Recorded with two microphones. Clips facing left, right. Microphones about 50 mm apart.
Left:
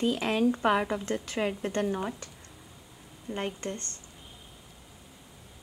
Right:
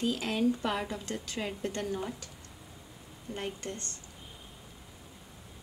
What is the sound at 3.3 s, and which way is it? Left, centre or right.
Speech, left.